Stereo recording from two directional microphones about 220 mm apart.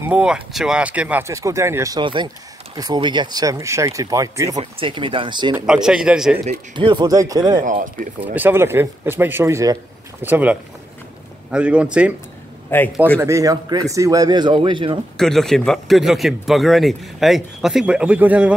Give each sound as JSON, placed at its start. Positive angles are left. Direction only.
{"t": 0.0, "sound": "speech", "side_deg": -5}
{"t": 5.7, "sound": "speech", "side_deg": -5}
{"t": 6.7, "sound": "speech", "side_deg": -20}
{"t": 7.6, "sound": "speech", "side_deg": -35}
{"t": 8.4, "sound": "speech", "side_deg": -10}
{"t": 12.7, "sound": "a man's voice", "side_deg": 10}
{"t": 13.2, "sound": "speech", "side_deg": -15}
{"t": 15.1, "sound": "speech", "side_deg": 0}